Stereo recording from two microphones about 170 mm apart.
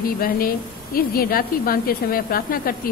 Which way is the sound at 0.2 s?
60° left (ahead or behind).